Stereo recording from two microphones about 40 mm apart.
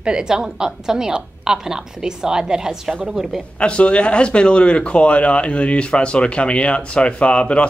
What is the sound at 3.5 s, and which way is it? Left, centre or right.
Speech, left.